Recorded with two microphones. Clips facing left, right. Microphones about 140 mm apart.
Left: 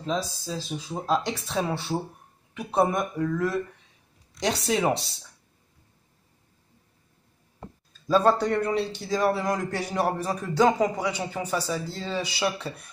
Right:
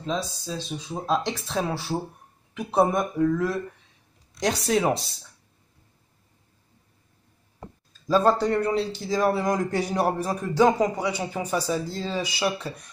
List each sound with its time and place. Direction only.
0.0 s a man's voice: centre (ahead or behind)
8.1 s a man's voice: centre (ahead or behind)
9.3 s a man's voice: 15° right (ahead or behind)